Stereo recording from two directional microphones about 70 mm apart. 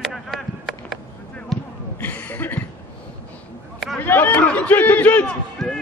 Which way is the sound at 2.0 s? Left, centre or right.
Left.